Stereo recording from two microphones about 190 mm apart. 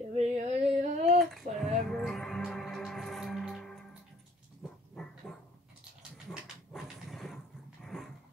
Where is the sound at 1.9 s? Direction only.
Centre (ahead or behind).